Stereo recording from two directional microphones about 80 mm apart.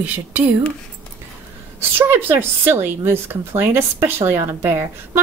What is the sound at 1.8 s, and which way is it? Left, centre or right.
Speech, right.